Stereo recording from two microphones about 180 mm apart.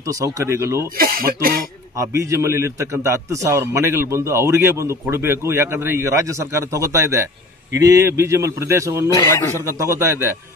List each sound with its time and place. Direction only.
0.0 s a man's voice: 15° right (ahead or behind)
0.8 s speech: 55° right (ahead or behind)
2.0 s a man's voice: 15° right (ahead or behind)
9.1 s speech: 15° left (ahead or behind)
9.7 s a man's voice: 15° right (ahead or behind)